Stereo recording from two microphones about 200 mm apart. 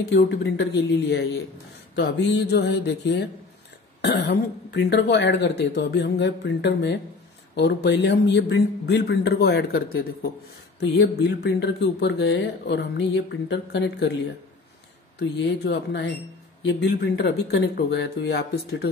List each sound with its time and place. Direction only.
0.1 s speech: 60° left (ahead or behind)
2.0 s speech: 60° left (ahead or behind)
15.1 s speech: 55° left (ahead or behind)